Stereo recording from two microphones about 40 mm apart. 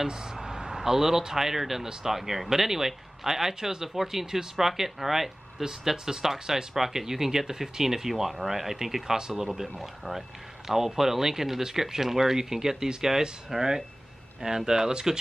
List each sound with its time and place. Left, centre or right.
0.0 s speech: centre